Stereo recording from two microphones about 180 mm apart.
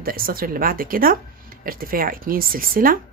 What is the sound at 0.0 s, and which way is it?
Speech, 55° right (ahead or behind).